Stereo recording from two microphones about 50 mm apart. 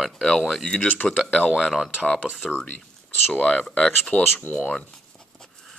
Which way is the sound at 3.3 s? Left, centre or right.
Centre.